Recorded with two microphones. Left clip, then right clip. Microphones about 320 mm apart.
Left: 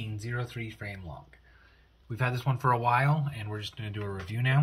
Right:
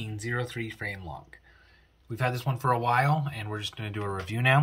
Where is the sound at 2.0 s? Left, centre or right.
Centre.